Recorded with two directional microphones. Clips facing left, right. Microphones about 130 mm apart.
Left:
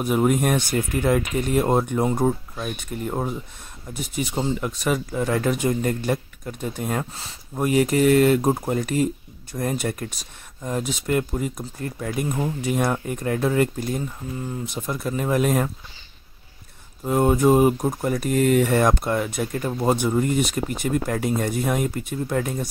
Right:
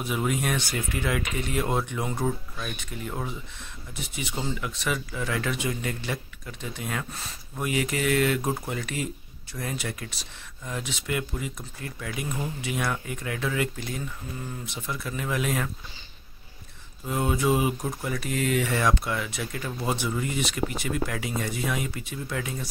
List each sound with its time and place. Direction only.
0.0 s speech: 45° left (ahead or behind)
17.0 s speech: 45° left (ahead or behind)